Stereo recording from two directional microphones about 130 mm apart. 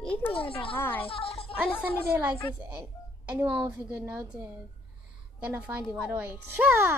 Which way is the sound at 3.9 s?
20° right (ahead or behind).